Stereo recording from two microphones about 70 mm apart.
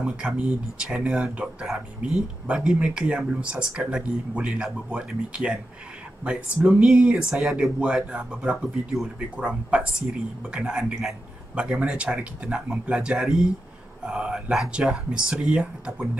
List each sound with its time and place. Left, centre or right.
0.0 s speech: centre